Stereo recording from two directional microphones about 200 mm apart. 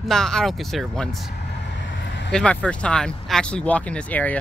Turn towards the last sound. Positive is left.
turn(degrees=5)  # may be behind; listen again after turning